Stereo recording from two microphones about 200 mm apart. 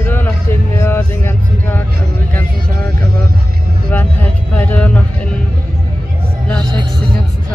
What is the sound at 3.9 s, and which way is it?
Music, 10° left (ahead or behind).